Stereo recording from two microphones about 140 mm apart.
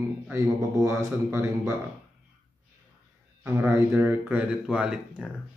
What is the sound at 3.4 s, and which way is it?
Speech, 15° right (ahead or behind).